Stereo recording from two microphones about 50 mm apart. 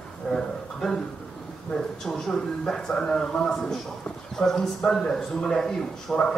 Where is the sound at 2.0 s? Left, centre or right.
Centre.